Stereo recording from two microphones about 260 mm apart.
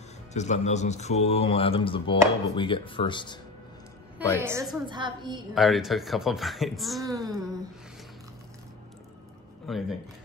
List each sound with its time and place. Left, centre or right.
0.3 s speech: left
4.5 s a woman's voice: centre
5.5 s speech: centre
7.1 s a woman's voice: centre
9.7 s speech: centre